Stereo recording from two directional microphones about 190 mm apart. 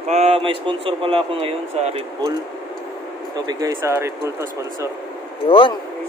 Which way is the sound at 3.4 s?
15° right (ahead or behind).